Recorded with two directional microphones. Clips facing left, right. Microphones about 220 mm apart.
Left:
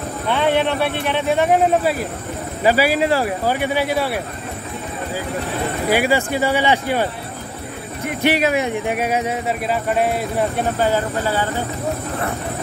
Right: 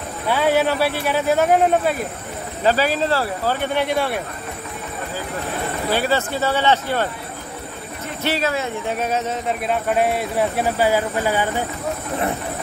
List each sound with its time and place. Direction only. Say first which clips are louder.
0.3 s speech: even; 5° right (ahead or behind)
5.9 s speech: left 3 dB; 10° left (ahead or behind); by 11.5 s 15° right (ahead or behind)